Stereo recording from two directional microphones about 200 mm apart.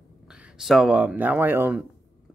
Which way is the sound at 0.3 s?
5° right (ahead or behind).